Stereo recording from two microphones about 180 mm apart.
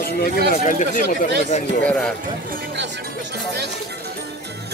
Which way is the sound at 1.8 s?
5° left (ahead or behind).